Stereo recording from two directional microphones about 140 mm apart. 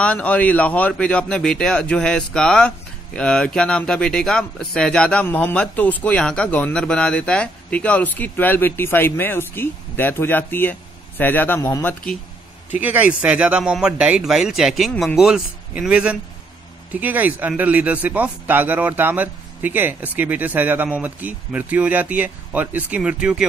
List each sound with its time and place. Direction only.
0.0 s speech: 10° left (ahead or behind)
12.8 s a man's voice: 10° right (ahead or behind)